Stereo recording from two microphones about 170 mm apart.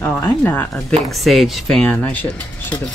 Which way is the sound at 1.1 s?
Centre (ahead or behind).